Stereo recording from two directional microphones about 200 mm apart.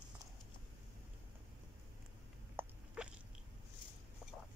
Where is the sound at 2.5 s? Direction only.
5° right (ahead or behind).